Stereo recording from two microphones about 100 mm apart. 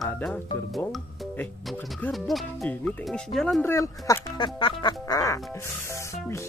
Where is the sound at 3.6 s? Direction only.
25° left (ahead or behind).